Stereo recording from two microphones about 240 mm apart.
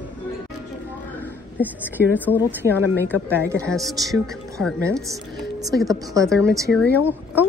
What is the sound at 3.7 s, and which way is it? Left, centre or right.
Speech, centre.